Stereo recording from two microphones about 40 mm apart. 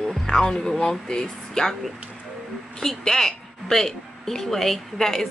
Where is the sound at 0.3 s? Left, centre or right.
Centre.